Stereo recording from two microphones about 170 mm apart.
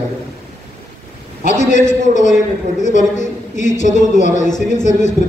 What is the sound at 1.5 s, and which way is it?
A woman's voice, 45° left (ahead or behind).